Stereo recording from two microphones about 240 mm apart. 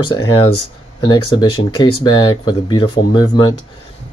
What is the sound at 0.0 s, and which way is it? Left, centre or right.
Speech, centre.